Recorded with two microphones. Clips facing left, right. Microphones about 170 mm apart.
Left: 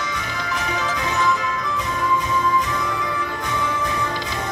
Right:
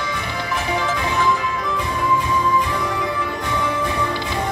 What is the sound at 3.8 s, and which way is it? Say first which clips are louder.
Music: right 2 dB; 25° right (ahead or behind).